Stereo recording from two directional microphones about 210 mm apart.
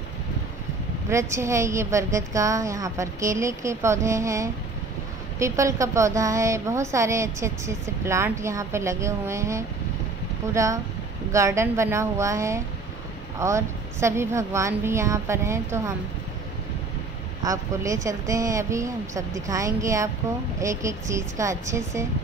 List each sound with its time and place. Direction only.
1.1 s a woman's voice: 15° right (ahead or behind)
17.4 s a woman's voice: 15° right (ahead or behind)